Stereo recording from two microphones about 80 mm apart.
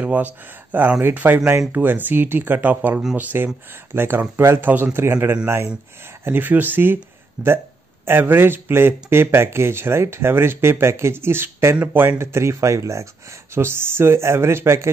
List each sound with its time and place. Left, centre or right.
0.0 s speech: centre